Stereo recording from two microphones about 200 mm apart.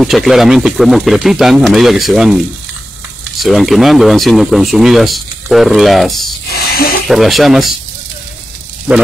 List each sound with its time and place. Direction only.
0.0 s speech: centre (ahead or behind)
3.4 s speech: centre (ahead or behind)
6.5 s a sound: 50° left (ahead or behind)
7.1 s speech: centre (ahead or behind)
8.9 s speech: 5° right (ahead or behind)